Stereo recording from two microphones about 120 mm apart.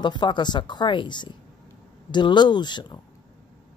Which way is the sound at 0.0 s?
40° left (ahead or behind).